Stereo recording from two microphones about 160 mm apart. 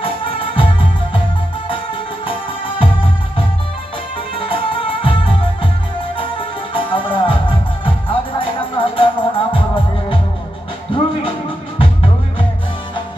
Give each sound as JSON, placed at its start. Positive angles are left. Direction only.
{"t": 0.0, "sound": "music", "side_deg": 35}
{"t": 2.2, "sound": "music", "side_deg": 35}
{"t": 11.8, "sound": "music", "side_deg": 35}